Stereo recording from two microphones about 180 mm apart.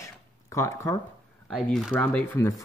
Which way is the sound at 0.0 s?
15° left (ahead or behind).